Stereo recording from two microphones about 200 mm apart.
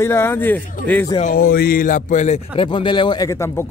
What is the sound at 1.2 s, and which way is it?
A man's voice, 45° left (ahead or behind).